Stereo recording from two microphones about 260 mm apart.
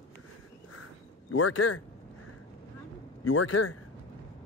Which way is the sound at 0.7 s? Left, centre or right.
Left.